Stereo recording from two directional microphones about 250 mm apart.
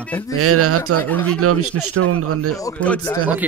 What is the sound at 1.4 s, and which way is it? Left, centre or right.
Speech, right.